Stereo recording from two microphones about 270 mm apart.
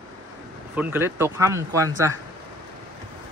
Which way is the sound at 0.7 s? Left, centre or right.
Centre.